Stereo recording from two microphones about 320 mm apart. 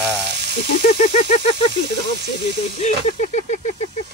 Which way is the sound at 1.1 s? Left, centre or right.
Centre.